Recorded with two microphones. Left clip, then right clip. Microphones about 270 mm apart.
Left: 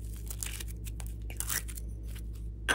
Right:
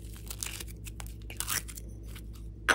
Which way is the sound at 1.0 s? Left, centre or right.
Centre.